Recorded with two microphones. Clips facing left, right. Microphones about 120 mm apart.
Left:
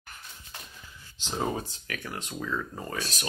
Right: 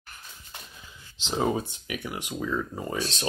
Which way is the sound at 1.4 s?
15° right (ahead or behind).